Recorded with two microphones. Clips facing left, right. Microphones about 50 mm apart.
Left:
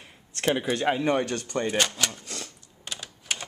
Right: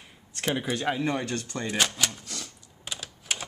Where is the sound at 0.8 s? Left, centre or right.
Centre.